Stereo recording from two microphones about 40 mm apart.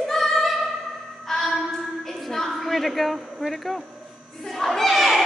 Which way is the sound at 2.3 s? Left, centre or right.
Centre.